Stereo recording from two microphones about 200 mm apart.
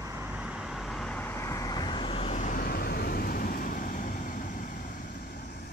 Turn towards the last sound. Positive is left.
turn(degrees=40)  # may be behind; listen again after turning